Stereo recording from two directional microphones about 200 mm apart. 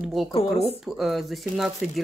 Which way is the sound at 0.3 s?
30° left (ahead or behind).